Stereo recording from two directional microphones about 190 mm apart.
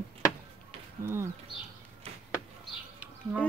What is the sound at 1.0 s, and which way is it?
Speech, 10° right (ahead or behind).